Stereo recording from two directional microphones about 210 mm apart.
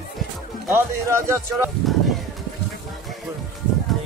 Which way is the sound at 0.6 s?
15° right (ahead or behind).